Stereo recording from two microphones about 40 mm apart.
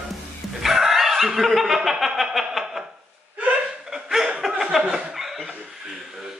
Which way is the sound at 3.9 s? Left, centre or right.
Centre.